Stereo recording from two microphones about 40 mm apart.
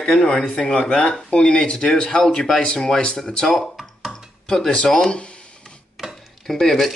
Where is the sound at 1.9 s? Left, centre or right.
Centre.